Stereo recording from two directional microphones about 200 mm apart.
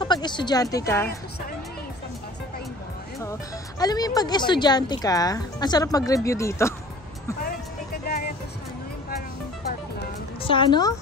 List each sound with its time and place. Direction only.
0.0 s speech: 20° left (ahead or behind)
3.8 s speech: 20° left (ahead or behind)
10.4 s speech: 25° left (ahead or behind)